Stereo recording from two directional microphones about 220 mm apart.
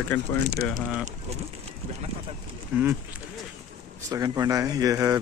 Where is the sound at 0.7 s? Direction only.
Centre (ahead or behind).